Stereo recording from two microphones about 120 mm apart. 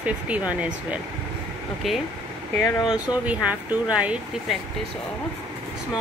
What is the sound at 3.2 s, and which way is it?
Speech, 10° right (ahead or behind).